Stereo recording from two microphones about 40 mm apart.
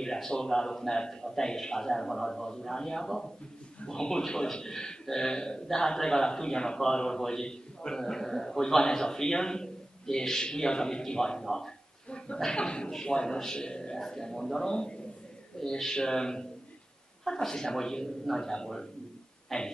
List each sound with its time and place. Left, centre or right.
0.0 s a man's voice: centre
12.4 s a man's voice: left